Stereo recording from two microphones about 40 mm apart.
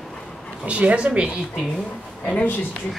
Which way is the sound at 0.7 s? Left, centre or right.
Right.